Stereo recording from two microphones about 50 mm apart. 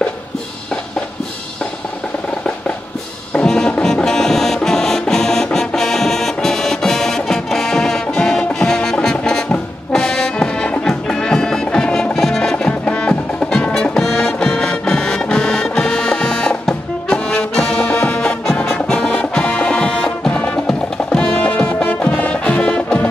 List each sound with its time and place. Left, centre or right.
3.3 s music: centre
21.4 s music: left